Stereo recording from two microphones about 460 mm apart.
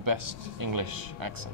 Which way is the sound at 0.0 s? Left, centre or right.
Right.